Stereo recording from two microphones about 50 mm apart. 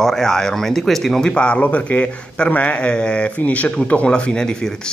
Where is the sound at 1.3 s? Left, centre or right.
Left.